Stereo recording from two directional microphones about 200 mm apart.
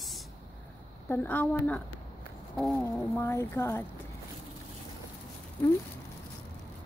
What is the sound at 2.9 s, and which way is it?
Speech, 5° left (ahead or behind).